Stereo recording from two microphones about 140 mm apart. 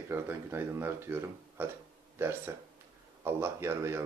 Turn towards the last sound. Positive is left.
turn(degrees=-20)  # may be behind; listen again after turning